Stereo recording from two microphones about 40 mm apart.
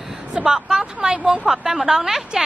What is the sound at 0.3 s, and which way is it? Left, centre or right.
Speech, right.